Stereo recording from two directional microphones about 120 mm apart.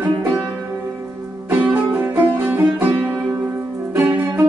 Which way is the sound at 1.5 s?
15° right (ahead or behind).